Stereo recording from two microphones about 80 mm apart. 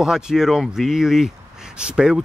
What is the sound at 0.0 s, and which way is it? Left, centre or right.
Speech, centre.